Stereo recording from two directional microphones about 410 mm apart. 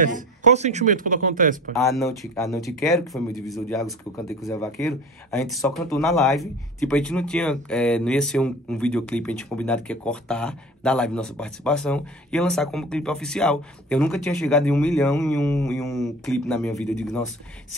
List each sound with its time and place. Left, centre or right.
0.0 s speech: centre
1.8 s speech: centre